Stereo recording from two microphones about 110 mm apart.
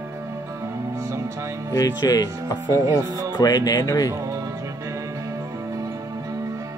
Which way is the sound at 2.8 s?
30° right (ahead or behind).